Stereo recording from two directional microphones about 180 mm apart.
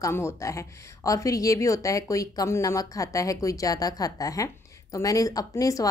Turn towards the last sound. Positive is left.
turn(degrees=20)  # may be behind; listen again after turning